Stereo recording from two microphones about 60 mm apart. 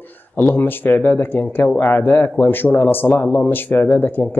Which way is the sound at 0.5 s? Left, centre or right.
Left.